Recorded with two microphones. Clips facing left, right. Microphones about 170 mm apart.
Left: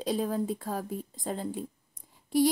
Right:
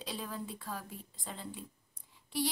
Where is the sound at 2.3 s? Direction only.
45° left (ahead or behind).